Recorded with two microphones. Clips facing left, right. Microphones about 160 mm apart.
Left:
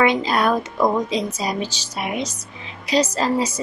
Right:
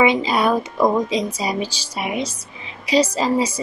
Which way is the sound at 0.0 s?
10° right (ahead or behind).